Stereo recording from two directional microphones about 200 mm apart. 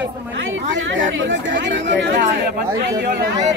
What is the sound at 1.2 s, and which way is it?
Speech, 65° right (ahead or behind).